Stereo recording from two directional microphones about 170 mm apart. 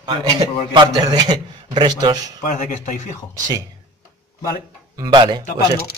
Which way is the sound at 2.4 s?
50° left (ahead or behind).